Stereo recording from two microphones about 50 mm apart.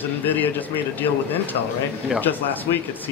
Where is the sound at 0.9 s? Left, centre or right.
Left.